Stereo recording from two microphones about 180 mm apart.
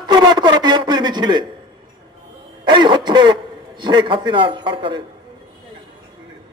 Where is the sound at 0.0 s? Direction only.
25° right (ahead or behind).